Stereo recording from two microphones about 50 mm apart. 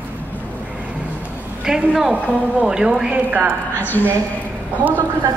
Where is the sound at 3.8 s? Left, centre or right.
Left.